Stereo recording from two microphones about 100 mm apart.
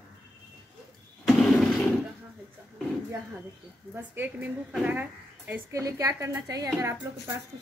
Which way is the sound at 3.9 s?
20° right (ahead or behind).